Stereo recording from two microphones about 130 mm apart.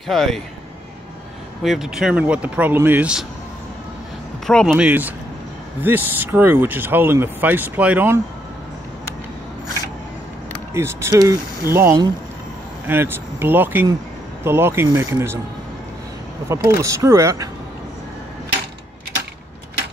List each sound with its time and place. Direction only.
0.1 s speech: centre (ahead or behind)
1.6 s speech: 5° right (ahead or behind)
4.5 s speech: 5° left (ahead or behind)
4.7 s speech: 10° right (ahead or behind)
10.7 s speech: 20° right (ahead or behind)
16.4 s speech: 20° right (ahead or behind)